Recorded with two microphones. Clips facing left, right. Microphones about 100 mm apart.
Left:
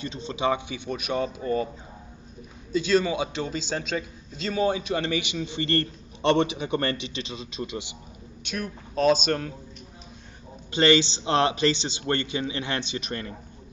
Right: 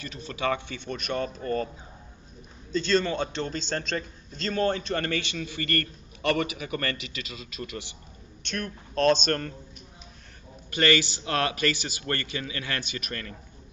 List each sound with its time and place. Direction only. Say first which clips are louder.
0.0 s a man's voice: left 3 dB; 20° left (ahead or behind)
2.7 s a man's voice: left 2 dB; 10° left (ahead or behind)
8.5 s speech: left 1 dB; 10° left (ahead or behind)
10.7 s a man's voice: left 4 dB; 25° left (ahead or behind)